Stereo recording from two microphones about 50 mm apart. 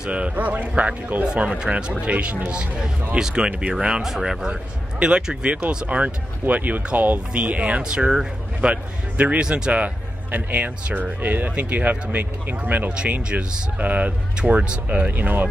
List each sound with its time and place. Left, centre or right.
0.1 s speech: right